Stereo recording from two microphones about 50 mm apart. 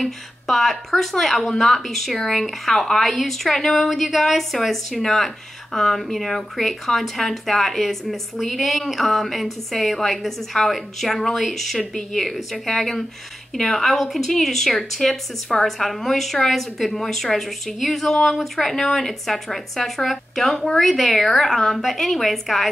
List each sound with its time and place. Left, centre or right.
0.0 s a woman's voice: centre